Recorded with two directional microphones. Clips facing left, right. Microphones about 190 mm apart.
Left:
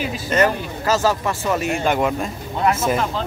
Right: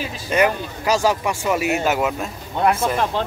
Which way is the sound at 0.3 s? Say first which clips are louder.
Even; 10° right (ahead or behind).